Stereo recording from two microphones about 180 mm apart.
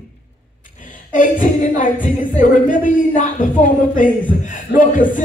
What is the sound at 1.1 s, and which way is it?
Speech, 45° left (ahead or behind).